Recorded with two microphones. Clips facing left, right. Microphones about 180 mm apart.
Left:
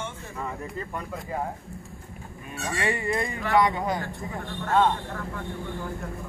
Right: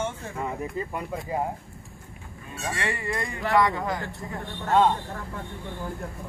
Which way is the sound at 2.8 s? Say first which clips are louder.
Left 4 dB; 25° left (ahead or behind).